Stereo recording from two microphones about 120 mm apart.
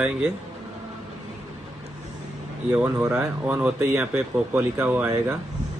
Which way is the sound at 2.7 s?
15° right (ahead or behind).